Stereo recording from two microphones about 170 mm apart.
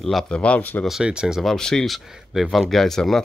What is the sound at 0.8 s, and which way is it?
Speech, 5° right (ahead or behind).